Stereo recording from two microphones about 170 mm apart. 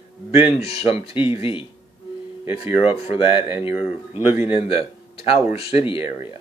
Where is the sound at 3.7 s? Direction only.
10° right (ahead or behind).